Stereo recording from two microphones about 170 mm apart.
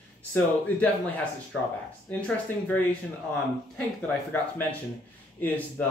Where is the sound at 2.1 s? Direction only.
5° left (ahead or behind).